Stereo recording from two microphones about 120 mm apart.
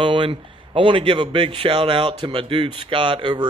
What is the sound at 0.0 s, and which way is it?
A man's voice, 45° right (ahead or behind).